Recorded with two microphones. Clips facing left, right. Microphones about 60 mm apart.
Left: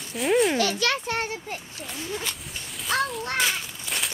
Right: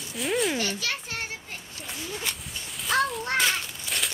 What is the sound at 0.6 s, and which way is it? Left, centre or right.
Speech, left.